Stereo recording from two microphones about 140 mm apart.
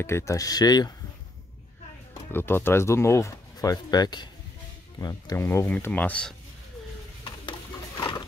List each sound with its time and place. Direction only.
0.0 s speech: 20° left (ahead or behind)
2.3 s speech: 15° left (ahead or behind)